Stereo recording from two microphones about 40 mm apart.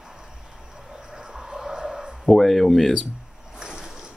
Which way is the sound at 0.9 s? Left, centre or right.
Centre.